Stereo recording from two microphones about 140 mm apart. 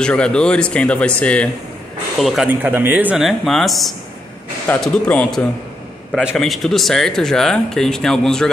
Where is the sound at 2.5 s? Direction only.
15° right (ahead or behind); by 5.4 s 5° left (ahead or behind).